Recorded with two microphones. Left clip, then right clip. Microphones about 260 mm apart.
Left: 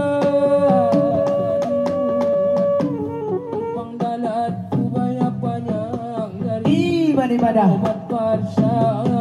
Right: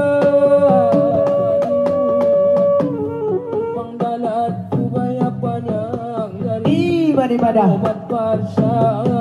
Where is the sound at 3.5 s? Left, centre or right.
Left.